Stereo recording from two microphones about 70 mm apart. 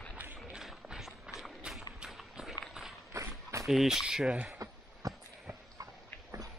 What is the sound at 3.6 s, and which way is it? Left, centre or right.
Speech, centre.